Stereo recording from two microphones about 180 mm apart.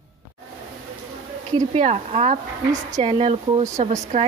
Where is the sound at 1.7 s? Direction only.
35° right (ahead or behind).